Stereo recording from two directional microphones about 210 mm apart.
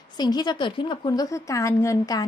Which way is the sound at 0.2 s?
20° left (ahead or behind).